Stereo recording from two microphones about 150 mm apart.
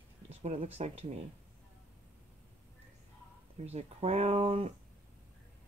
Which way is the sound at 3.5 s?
45° right (ahead or behind).